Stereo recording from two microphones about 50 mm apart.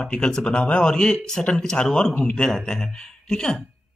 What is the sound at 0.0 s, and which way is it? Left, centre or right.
Speech, centre.